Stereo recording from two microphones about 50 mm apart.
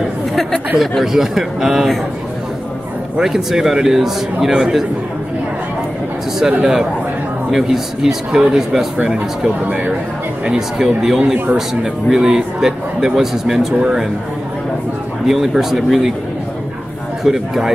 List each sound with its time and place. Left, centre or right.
0.7 s speech: centre
3.2 s speech: centre
6.6 s speech: centre
15.2 s speech: centre
17.2 s speech: centre